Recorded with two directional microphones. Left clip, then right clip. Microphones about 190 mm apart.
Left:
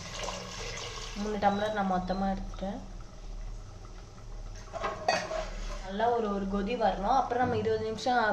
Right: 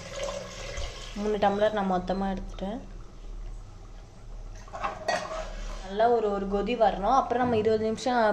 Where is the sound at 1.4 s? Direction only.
35° right (ahead or behind).